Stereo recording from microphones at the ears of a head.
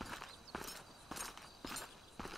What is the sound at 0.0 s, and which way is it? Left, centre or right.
Walk, centre.